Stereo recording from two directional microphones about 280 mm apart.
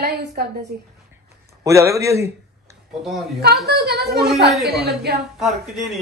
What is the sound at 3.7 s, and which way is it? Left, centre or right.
A woman's voice, right.